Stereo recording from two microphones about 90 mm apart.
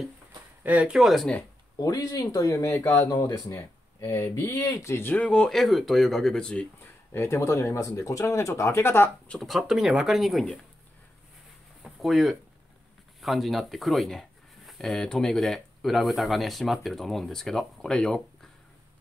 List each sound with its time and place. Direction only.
0.7 s speech: 15° right (ahead or behind)
0.9 s speech: centre (ahead or behind)
1.8 s speech: 45° left (ahead or behind); by 3.0 s 25° left (ahead or behind)
3.1 s speech: 40° left (ahead or behind)
5.1 s speech: 15° left (ahead or behind)
6.8 s speech: 30° left (ahead or behind)
9.3 s speech: centre (ahead or behind)
11.8 s a sound: centre (ahead or behind)
13.2 s speech: centre (ahead or behind)